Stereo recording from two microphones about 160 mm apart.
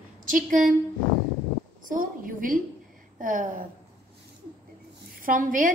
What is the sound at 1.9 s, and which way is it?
A woman's voice, 60° right (ahead or behind).